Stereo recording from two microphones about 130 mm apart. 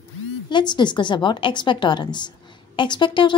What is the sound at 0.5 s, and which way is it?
A woman's voice, 35° left (ahead or behind).